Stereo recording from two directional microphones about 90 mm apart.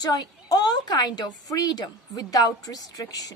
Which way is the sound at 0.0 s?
45° left (ahead or behind).